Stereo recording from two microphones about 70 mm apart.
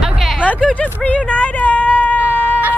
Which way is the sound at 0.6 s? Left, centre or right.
Centre.